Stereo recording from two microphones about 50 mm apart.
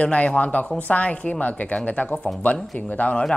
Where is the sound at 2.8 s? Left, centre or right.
Left.